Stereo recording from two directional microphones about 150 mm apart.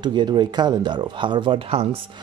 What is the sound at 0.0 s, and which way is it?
Speech, 30° right (ahead or behind).